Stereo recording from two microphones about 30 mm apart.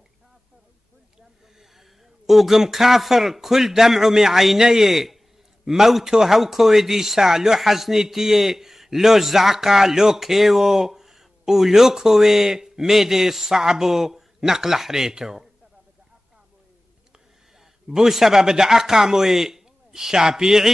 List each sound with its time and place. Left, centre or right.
2.2 s a man's voice: centre
17.8 s a man's voice: centre